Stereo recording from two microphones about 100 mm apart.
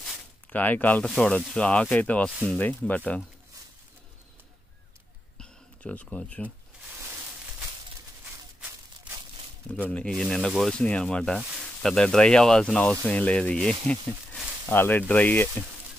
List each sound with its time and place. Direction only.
0.5 s speech: 15° left (ahead or behind)
5.4 s a sound: 10° left (ahead or behind)
9.8 s speech: 10° left (ahead or behind)
14.7 s speech: 20° left (ahead or behind)